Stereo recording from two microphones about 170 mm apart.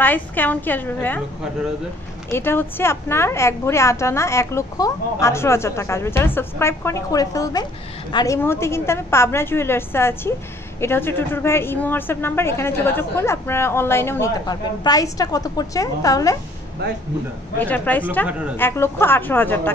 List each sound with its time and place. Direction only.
0.0 s a woman's voice: 10° left (ahead or behind)
2.3 s a woman's voice: 15° left (ahead or behind)
17.6 s a woman's voice: 10° left (ahead or behind)